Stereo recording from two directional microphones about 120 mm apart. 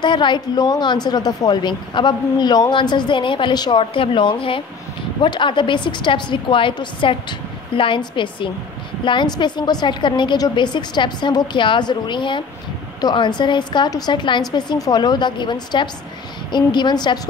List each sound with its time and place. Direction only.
0.0 s a woman's voice: 40° left (ahead or behind)